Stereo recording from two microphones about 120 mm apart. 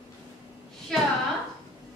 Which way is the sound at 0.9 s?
Centre (ahead or behind).